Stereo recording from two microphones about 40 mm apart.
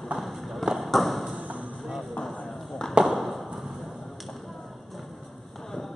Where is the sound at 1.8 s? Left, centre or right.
Centre.